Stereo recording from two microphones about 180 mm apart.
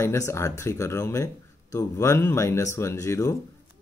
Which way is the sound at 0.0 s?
15° left (ahead or behind).